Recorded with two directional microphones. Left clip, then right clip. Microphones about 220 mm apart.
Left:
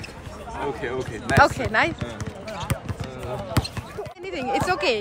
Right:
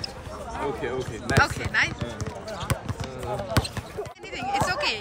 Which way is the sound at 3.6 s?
40° right (ahead or behind).